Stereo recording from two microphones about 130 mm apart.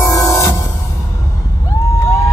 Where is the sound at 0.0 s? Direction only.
25° left (ahead or behind).